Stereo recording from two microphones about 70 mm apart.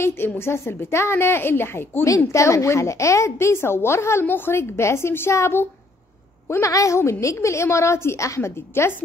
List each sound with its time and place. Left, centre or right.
0.0 s a woman's voice: left
2.0 s a woman's voice: left